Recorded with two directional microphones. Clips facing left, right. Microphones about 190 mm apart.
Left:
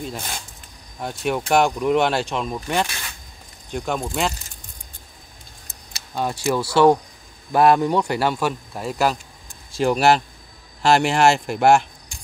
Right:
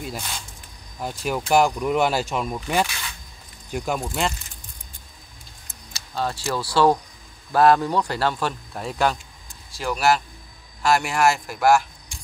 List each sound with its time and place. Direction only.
1.0 s speech: centre (ahead or behind)
6.1 s speech: 15° left (ahead or behind)
9.8 s speech: 25° left (ahead or behind)